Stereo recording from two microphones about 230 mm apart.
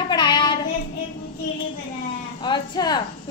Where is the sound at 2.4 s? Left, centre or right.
Centre.